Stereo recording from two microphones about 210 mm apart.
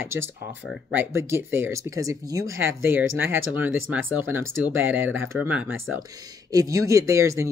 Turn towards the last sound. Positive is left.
turn(degrees=-15)  # may be behind; listen again after turning